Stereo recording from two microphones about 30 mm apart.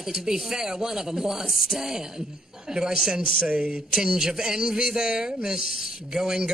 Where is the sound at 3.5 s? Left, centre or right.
Right.